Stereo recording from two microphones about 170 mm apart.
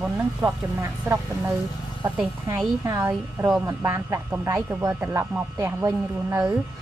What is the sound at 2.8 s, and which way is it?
A woman's voice, 20° right (ahead or behind).